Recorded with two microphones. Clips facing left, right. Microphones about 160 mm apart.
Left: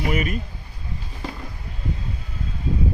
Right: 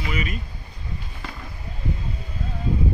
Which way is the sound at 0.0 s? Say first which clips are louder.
Left 5 dB; 50° left (ahead or behind).